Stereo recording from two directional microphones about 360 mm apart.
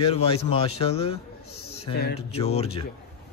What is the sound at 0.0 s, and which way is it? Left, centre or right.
A man's voice, centre.